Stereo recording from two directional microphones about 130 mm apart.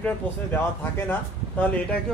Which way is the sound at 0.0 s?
15° left (ahead or behind).